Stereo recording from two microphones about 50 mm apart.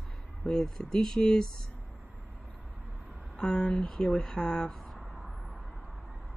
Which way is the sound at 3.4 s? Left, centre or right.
Left.